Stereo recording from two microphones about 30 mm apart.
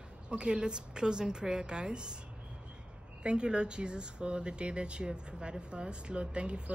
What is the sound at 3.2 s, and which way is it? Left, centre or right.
Speech, right.